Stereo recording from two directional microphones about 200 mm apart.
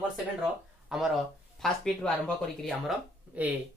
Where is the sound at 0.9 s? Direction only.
Centre (ahead or behind).